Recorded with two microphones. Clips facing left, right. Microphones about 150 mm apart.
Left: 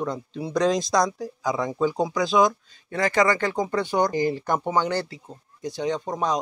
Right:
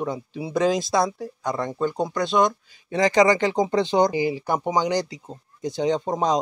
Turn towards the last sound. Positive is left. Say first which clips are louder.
# right 3 dB
turn(degrees=-25)  # may be behind; listen again after turning